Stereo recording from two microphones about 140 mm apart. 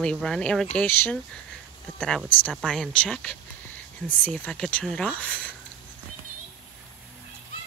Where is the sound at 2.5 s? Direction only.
Centre (ahead or behind).